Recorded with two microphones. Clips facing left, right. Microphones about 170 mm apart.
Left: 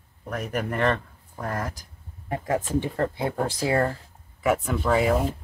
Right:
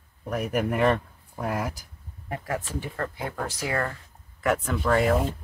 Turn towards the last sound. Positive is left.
turn(degrees=0)  # may be behind; listen again after turning